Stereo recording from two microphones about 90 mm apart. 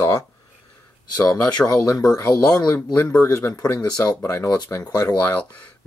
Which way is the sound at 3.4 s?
30° left (ahead or behind).